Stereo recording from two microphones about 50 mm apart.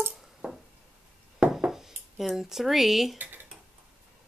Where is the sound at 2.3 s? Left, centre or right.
Centre.